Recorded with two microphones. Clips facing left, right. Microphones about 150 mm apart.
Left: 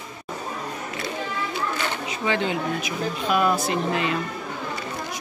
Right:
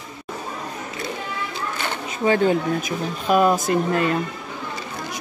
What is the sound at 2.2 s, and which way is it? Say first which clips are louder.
Speech: right 7 dB; 45° right (ahead or behind).